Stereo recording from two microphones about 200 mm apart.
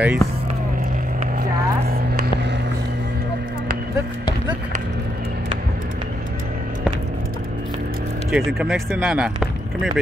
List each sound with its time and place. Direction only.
0.0 s speech: 10° right (ahead or behind)
1.4 s a sound: 50° right (ahead or behind)
8.3 s speech: centre (ahead or behind)